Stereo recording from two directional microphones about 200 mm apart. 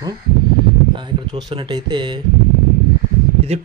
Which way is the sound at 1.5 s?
20° right (ahead or behind).